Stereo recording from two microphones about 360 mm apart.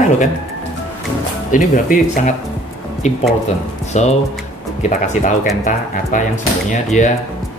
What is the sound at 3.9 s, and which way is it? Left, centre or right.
Speech, centre.